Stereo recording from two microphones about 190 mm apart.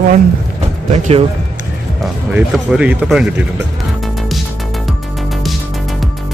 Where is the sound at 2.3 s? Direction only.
5° right (ahead or behind).